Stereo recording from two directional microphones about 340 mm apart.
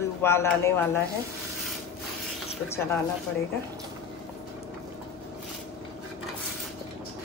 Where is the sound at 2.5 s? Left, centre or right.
Centre.